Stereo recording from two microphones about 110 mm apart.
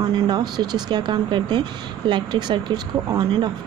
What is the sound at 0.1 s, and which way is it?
A woman's voice, 40° right (ahead or behind).